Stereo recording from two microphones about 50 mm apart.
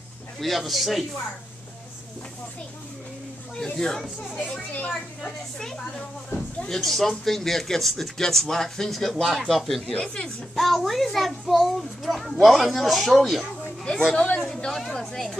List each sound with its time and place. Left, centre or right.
0.4 s a child's voice: centre
3.5 s speech: centre
4.4 s a child's voice: left
5.2 s a child's voice: centre
10.0 s speech: centre
10.5 s a child's voice: centre
14.1 s speech: left
14.7 s speech: centre